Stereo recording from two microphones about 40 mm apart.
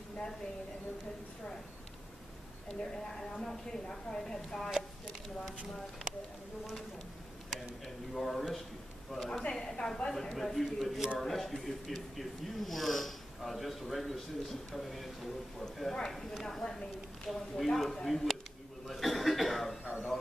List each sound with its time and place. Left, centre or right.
2.8 s a woman's voice: centre
7.8 s speech: centre
9.5 s a woman's voice: centre
18.9 s cough: centre
19.8 s a sound: right